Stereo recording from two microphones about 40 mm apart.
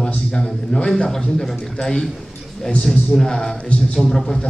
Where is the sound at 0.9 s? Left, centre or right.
Centre.